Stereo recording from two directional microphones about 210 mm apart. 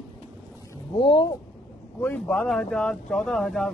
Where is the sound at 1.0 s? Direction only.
20° left (ahead or behind).